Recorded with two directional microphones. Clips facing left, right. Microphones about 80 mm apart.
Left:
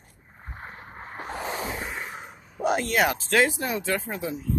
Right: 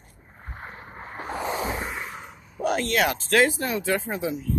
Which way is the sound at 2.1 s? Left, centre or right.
Centre.